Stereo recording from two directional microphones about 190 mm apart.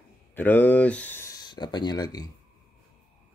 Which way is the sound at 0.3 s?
10° left (ahead or behind).